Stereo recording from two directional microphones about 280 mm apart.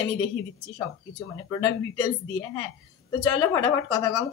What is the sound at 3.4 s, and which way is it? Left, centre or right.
Speech, centre.